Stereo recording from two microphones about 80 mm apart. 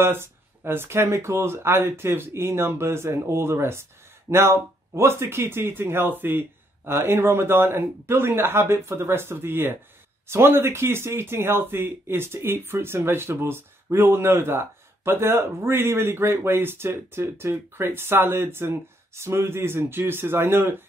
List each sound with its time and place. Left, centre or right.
0.0 s speech: right